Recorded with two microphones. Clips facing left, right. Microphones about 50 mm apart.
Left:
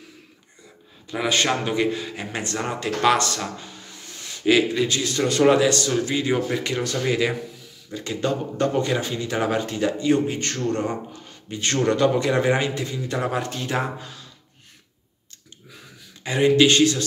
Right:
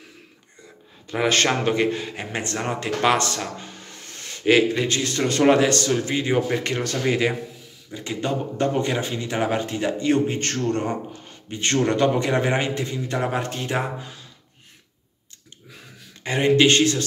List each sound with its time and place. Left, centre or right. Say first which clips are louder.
1.2 s a man's voice: right 2 dB; right
5.9 s speech: even; right
6.6 s a man's voice: right 1 dB; right
7.9 s speech: left 1 dB; right
9.9 s a man's voice: right 1 dB; right
16.3 s a man's voice: even; right